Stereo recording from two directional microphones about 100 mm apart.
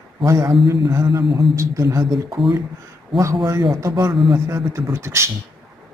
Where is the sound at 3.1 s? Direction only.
Centre (ahead or behind).